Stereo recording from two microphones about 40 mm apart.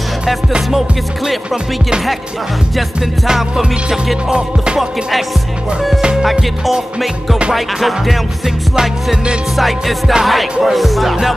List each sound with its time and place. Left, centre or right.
0.7 s music: centre
3.3 s music: centre
4.3 s music: right
7.5 s music: centre
9.6 s music: centre